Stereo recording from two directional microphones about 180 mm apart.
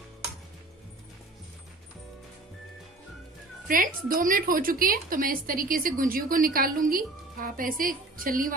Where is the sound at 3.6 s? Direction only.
50° right (ahead or behind).